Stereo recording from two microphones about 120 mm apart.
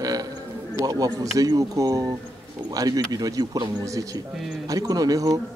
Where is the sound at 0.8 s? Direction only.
30° right (ahead or behind).